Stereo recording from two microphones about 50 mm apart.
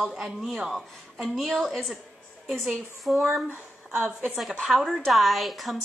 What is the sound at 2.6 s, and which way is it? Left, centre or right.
Speech, centre.